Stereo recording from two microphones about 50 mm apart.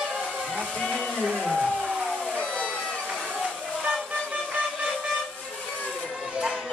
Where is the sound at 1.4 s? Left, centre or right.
Centre.